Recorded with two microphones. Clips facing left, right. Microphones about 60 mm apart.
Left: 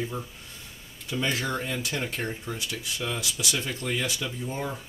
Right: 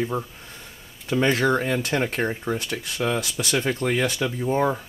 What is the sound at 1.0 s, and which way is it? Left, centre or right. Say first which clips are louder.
Speech: right 8 dB; right.